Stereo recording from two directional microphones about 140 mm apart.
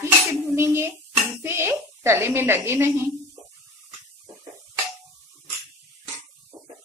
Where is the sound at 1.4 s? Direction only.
20° right (ahead or behind).